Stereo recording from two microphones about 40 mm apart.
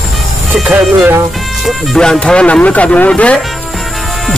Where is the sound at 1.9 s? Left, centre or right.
Centre.